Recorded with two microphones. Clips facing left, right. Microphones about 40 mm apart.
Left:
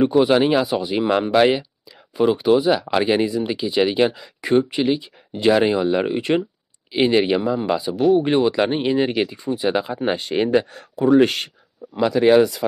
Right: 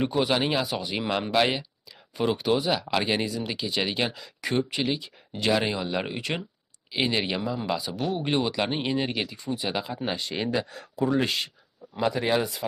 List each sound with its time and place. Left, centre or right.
0.0 s speech: centre
9.9 s speech: left
12.0 s speech: left